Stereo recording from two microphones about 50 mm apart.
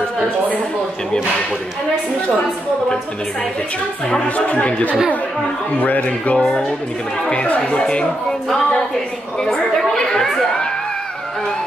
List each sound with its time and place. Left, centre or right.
4.5 s a woman's voice: left
9.4 s a woman's voice: centre